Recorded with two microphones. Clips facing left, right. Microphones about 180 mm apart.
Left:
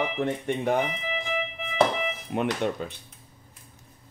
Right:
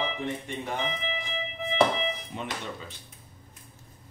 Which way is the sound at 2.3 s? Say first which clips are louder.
Left 9 dB; 60° left (ahead or behind).